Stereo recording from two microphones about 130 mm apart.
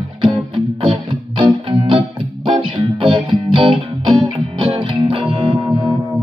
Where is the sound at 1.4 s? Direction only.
40° right (ahead or behind).